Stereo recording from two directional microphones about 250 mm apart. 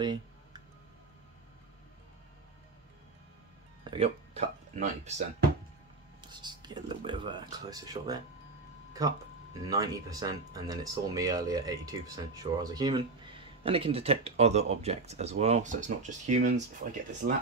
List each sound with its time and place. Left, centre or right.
0.0 s a sound: centre
3.8 s music: right
6.2 s speech: centre
9.6 s speech: centre; by 16.6 s right
17.2 s speech: right